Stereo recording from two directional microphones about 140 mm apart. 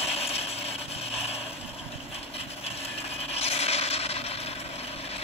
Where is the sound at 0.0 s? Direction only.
45° left (ahead or behind).